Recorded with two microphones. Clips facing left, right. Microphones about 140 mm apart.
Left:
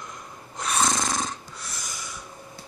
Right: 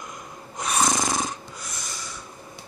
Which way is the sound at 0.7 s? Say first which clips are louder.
Right 2 dB; 15° right (ahead or behind).